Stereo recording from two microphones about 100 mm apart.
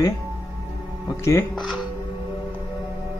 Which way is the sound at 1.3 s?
30° left (ahead or behind).